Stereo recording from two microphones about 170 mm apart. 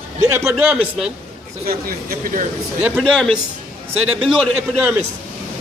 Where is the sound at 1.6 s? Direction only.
55° right (ahead or behind).